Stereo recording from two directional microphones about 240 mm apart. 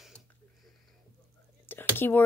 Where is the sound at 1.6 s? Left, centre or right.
Centre.